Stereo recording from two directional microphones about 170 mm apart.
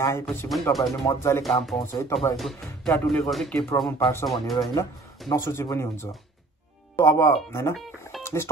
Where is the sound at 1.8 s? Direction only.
15° left (ahead or behind).